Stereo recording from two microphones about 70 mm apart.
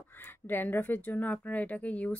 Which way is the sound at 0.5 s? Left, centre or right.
Left.